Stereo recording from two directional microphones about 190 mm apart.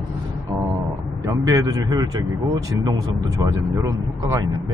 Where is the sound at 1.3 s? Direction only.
20° right (ahead or behind).